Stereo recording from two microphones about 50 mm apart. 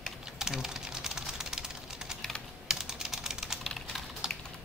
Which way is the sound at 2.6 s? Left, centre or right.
Centre.